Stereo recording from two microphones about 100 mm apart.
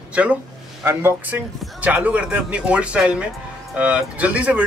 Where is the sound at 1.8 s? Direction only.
15° right (ahead or behind).